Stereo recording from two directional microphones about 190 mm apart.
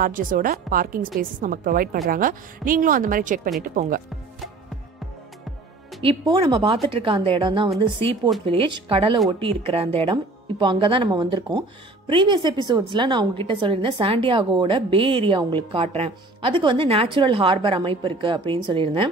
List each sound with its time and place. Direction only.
0.0 s speech: 45° right (ahead or behind)
6.0 s a woman's voice: 25° right (ahead or behind)